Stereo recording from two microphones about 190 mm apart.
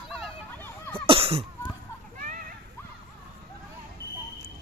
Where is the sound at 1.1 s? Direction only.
30° right (ahead or behind).